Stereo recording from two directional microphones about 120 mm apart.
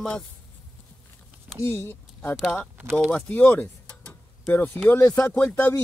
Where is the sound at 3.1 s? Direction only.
15° left (ahead or behind).